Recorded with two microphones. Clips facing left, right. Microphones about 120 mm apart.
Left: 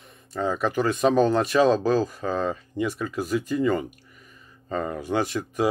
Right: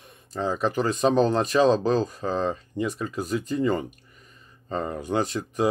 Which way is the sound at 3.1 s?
Centre (ahead or behind).